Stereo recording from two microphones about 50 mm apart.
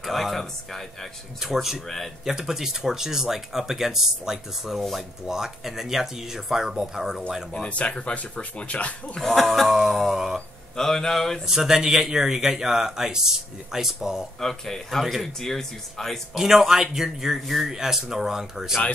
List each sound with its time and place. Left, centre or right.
0.0 s speech: centre
1.4 s a man's voice: centre
7.5 s speech: left
9.2 s speech: centre
11.4 s a man's voice: centre
14.4 s speech: centre
16.3 s a man's voice: centre